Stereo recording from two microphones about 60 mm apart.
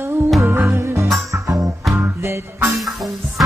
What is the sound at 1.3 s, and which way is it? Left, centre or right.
Music, right.